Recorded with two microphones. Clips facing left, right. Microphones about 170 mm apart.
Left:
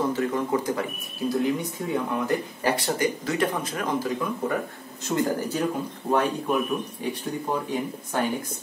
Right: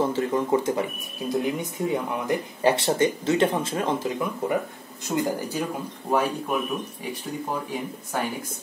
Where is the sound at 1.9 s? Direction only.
15° right (ahead or behind).